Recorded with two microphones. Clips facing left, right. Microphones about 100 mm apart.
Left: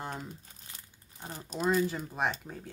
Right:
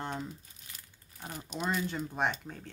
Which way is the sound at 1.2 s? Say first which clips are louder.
Even; 30° left (ahead or behind).